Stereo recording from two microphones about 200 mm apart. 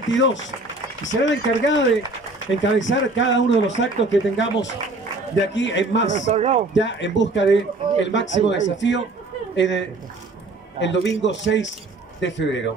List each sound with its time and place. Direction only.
0.1 s speech: 65° left (ahead or behind)
6.3 s speech: 35° right (ahead or behind)
6.7 s speech: 65° left (ahead or behind)